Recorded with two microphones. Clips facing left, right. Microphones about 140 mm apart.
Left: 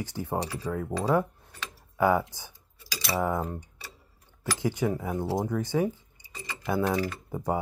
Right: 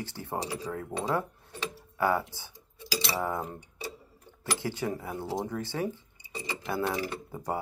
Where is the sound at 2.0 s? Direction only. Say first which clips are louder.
Left 4 dB; 15° left (ahead or behind).